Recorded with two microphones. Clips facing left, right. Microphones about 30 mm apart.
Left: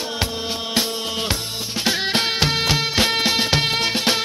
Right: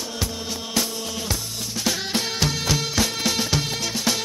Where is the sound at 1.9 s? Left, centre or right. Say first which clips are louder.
Left 5 dB; left.